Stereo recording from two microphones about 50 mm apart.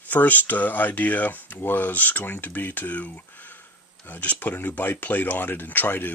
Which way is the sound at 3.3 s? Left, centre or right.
Left.